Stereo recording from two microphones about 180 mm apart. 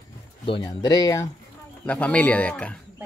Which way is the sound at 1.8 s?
10° left (ahead or behind).